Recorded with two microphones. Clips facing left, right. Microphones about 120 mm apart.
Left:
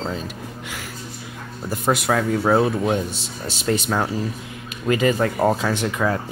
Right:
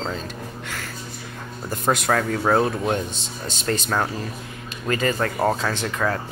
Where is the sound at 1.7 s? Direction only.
5° left (ahead or behind).